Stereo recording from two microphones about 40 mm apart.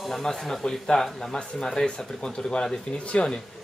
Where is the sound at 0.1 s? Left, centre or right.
Centre.